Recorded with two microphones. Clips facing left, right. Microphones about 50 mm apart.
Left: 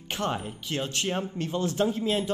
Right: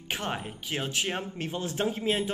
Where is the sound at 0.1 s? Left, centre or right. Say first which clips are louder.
Left 3 dB; centre.